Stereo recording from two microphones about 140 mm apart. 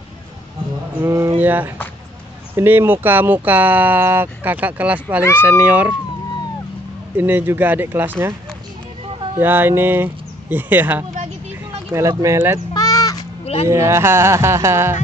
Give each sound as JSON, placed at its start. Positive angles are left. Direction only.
{"t": 1.0, "sound": "speech", "side_deg": -20}
{"t": 7.2, "sound": "speech", "side_deg": -15}
{"t": 9.4, "sound": "speech", "side_deg": -15}
{"t": 12.7, "sound": "bleat", "side_deg": 25}
{"t": 13.7, "sound": "speech", "side_deg": -20}